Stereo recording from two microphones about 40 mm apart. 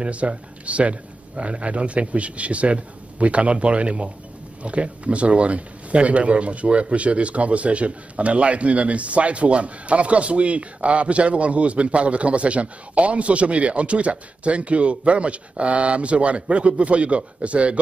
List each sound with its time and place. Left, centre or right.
0.0 s speech: right